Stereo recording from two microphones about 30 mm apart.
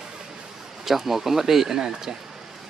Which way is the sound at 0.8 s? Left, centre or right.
Centre.